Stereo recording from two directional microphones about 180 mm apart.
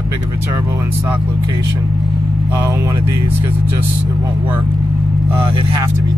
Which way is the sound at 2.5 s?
15° right (ahead or behind).